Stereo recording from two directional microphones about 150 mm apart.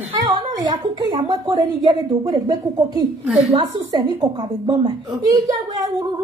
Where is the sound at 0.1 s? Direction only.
25° right (ahead or behind).